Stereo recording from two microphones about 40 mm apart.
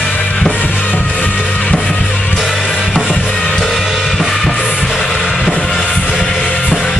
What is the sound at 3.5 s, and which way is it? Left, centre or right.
Music, centre.